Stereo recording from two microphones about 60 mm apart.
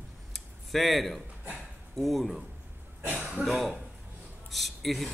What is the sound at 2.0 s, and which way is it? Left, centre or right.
Speech, centre.